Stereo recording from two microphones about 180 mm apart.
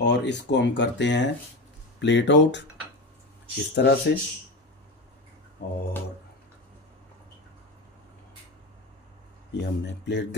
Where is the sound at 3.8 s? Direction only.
70° left (ahead or behind).